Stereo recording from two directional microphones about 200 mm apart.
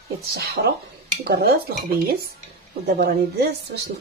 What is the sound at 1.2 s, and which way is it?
Dishes, 50° right (ahead or behind).